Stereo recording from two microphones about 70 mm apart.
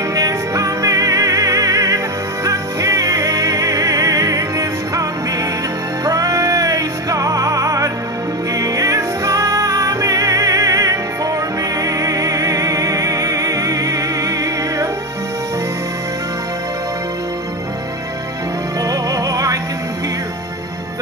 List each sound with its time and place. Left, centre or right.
0.1 s music: right
18.8 s music: right